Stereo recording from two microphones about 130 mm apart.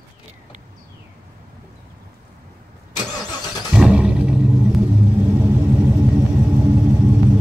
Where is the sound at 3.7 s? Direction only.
5° right (ahead or behind).